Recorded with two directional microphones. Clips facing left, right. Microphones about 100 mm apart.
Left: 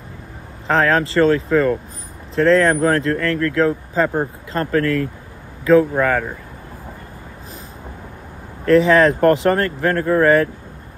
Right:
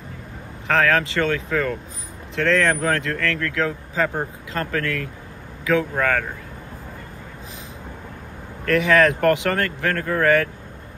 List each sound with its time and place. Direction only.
0.7 s speech: 30° left (ahead or behind)
8.6 s speech: 30° left (ahead or behind)